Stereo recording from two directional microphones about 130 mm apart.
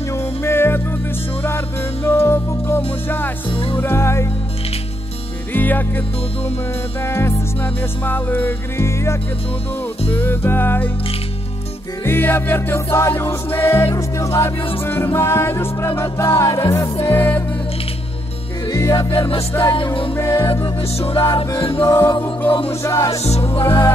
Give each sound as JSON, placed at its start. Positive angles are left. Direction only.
{"t": 0.1, "sound": "music", "side_deg": 20}
{"t": 2.0, "sound": "music", "side_deg": 20}
{"t": 3.4, "sound": "speech", "side_deg": 40}
{"t": 3.8, "sound": "music", "side_deg": 20}
{"t": 5.5, "sound": "music", "side_deg": 15}
{"t": 12.0, "sound": "music", "side_deg": 15}
{"t": 18.7, "sound": "music", "side_deg": 25}
{"t": 19.1, "sound": "music", "side_deg": 45}
{"t": 20.2, "sound": "music", "side_deg": 20}
{"t": 21.0, "sound": "music", "side_deg": 45}
{"t": 21.8, "sound": "music", "side_deg": 20}